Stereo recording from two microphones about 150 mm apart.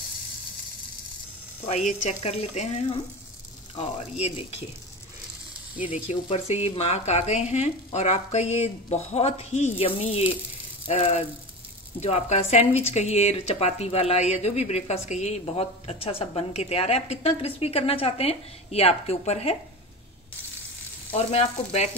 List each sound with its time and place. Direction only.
1.7 s speech: 50° left (ahead or behind)
6.2 s speech: 45° left (ahead or behind)
21.1 s speech: 45° left (ahead or behind)